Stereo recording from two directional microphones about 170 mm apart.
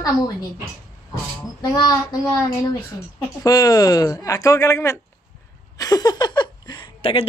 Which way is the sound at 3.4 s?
20° left (ahead or behind).